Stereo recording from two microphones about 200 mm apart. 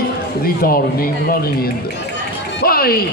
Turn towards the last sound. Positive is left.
turn(degrees=50)  # may be behind; listen again after turning